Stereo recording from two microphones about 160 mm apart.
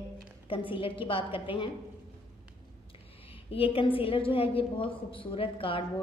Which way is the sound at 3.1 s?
35° left (ahead or behind).